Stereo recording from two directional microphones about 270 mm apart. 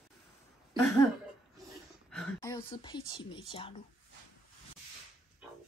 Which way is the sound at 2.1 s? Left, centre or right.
Centre.